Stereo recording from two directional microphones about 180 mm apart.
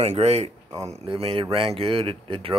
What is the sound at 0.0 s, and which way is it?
Speech, 35° right (ahead or behind).